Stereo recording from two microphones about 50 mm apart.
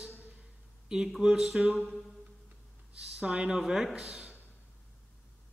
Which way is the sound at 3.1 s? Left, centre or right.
Centre.